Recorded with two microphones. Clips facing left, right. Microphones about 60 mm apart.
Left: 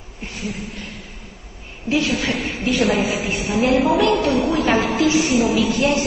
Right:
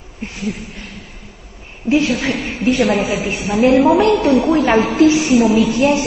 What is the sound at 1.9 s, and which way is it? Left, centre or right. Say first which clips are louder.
A woman's voice: right 4 dB; right.